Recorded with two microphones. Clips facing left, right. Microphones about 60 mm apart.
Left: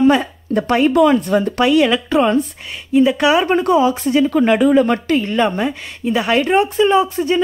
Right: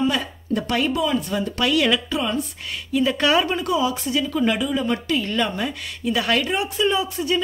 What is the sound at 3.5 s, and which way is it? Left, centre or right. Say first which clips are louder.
Speech: left 8 dB; left.